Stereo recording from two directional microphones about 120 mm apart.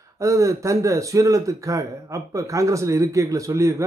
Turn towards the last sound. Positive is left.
turn(degrees=-25)  # may be behind; listen again after turning